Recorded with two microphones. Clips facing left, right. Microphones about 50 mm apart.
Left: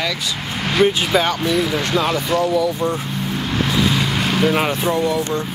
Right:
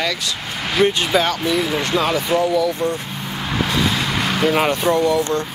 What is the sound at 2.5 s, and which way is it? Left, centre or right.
Speech, centre.